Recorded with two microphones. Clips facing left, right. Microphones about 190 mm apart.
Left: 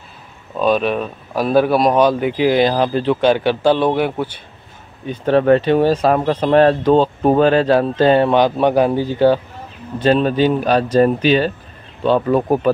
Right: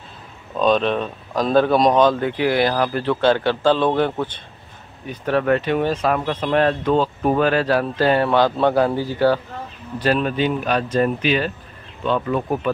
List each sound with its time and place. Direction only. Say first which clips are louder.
0.6 s speech: left 1 dB; 5° left (ahead or behind)
5.0 s speech: left 6 dB; 25° left (ahead or behind)